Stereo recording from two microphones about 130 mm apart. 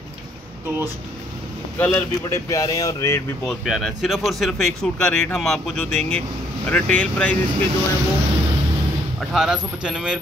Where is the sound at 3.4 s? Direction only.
Centre (ahead or behind).